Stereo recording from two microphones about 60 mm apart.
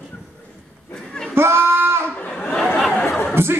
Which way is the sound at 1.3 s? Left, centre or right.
Right.